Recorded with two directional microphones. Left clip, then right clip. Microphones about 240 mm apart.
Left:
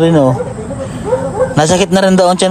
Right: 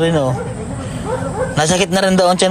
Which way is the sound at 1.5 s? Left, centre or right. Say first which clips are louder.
Left 3 dB; left.